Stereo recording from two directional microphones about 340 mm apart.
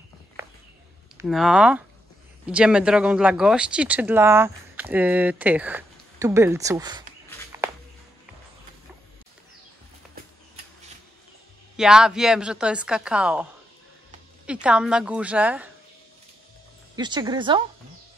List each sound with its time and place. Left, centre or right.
1.1 s speech: centre
7.5 s a sound: centre
11.7 s speech: centre
16.9 s speech: centre